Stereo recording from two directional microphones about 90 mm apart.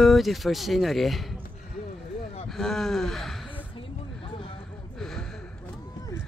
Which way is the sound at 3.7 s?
75° left (ahead or behind).